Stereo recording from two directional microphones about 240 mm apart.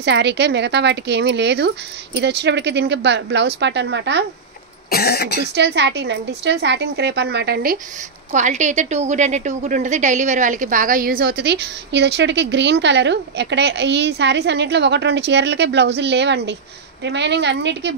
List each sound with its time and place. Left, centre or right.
0.0 s a woman's voice: right
4.8 s cough: left
5.5 s a woman's voice: right